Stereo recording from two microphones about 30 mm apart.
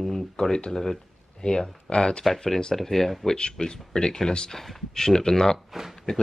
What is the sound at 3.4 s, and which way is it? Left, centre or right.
Speech, left.